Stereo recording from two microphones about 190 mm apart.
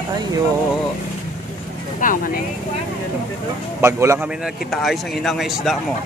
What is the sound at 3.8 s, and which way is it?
Speech, 15° right (ahead or behind).